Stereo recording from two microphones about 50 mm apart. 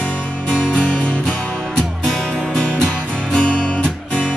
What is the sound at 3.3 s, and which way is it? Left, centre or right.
Music, left.